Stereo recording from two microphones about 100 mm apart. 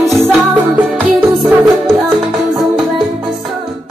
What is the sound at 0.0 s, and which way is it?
Music, 30° right (ahead or behind).